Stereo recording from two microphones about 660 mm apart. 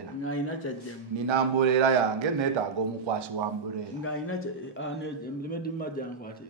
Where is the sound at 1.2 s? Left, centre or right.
Right.